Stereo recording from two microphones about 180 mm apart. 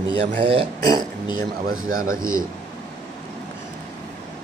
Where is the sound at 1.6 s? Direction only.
50° right (ahead or behind).